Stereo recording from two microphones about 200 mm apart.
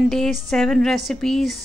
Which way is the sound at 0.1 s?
Centre (ahead or behind).